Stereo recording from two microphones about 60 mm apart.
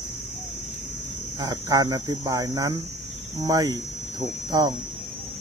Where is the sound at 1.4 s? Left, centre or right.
Right.